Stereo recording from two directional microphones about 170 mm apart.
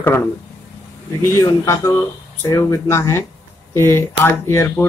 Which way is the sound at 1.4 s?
15° left (ahead or behind).